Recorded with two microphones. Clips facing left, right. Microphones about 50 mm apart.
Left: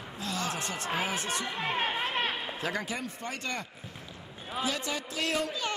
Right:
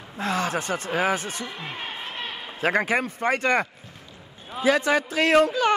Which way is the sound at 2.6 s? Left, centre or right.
Right.